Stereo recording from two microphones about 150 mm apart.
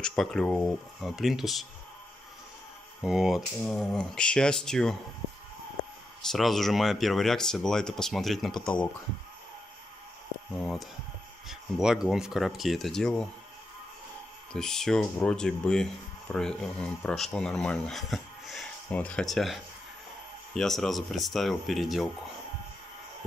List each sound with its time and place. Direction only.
0.0 s speech: 5° left (ahead or behind)
3.0 s speech: 5° right (ahead or behind)
6.3 s speech: centre (ahead or behind)
10.6 s speech: centre (ahead or behind)
14.5 s speech: 5° left (ahead or behind)